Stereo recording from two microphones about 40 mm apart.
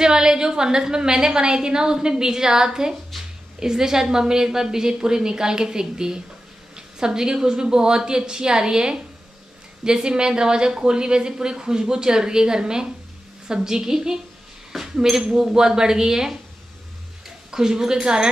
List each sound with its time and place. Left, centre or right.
0.0 s a woman's voice: centre
17.5 s a woman's voice: centre